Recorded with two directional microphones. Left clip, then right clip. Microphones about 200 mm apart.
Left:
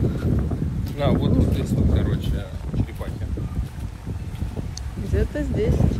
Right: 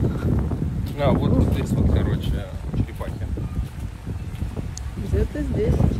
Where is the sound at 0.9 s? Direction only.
35° right (ahead or behind).